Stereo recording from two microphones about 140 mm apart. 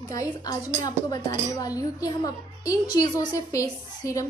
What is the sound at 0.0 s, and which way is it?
A child's voice, 25° left (ahead or behind).